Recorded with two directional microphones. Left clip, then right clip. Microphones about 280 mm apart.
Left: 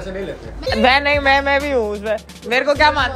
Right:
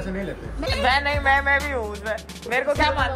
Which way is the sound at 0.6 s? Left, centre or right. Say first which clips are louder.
Left 7 dB; left.